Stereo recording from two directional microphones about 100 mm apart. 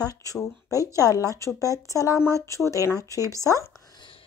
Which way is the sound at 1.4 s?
35° left (ahead or behind).